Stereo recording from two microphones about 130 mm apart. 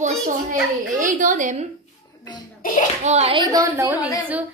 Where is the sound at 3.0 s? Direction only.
60° right (ahead or behind).